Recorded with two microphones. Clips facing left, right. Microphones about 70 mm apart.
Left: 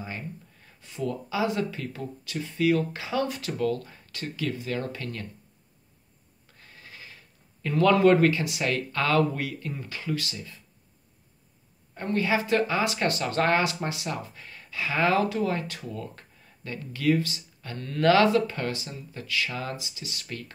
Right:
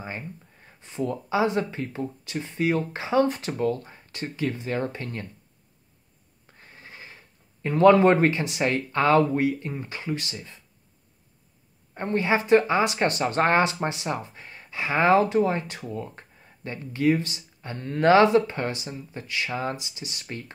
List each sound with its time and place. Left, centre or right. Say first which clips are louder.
0.0 s speech: right 1 dB; right
6.4 s speech: right 2 dB; right
11.9 s speech: right 2 dB; right